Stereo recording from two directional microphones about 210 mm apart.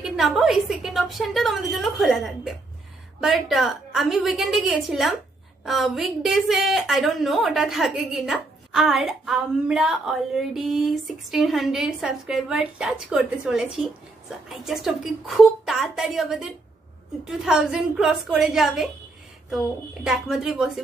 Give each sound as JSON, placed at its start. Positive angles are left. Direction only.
{"t": 0.0, "sound": "a woman's voice", "side_deg": 0}